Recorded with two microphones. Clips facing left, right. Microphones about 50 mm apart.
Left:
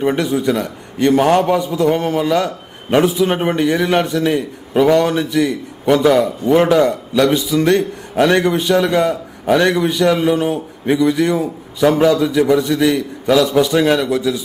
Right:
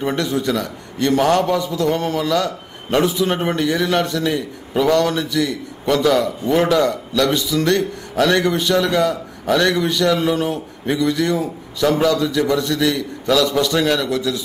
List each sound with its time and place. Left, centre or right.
0.0 s a man's voice: centre